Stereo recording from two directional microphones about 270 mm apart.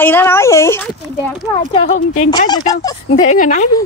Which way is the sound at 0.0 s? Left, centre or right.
Centre.